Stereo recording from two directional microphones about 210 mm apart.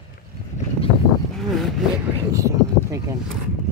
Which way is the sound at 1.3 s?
Centre (ahead or behind).